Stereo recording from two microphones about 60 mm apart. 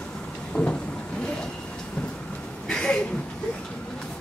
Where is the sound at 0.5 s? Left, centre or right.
Centre.